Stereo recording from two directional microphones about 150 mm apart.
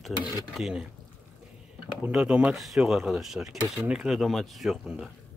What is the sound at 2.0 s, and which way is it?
Speech, 5° right (ahead or behind).